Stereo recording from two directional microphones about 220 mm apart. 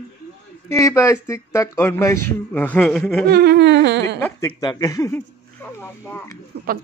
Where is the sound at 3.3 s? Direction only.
45° right (ahead or behind).